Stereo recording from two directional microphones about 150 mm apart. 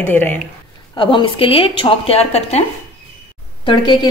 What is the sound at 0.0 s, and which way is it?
Speech, 10° left (ahead or behind).